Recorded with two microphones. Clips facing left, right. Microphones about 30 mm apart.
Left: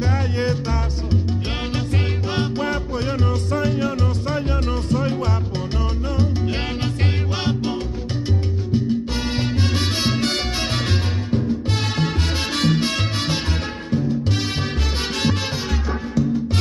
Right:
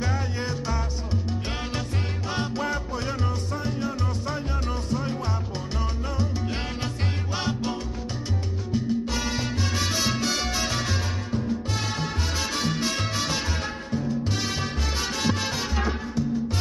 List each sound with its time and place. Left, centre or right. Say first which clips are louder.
0.1 s music: left 7 dB; left
2.2 s music: left 3 dB; left
3.5 s music: left 10 dB; left
4.3 s music: left 6 dB; left
7.3 s music: left 3 dB; left
10.1 s music: left 4 dB; left
12.0 s salsa music: left 6 dB; left